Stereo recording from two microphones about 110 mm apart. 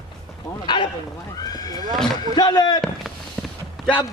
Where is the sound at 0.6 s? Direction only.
45° left (ahead or behind).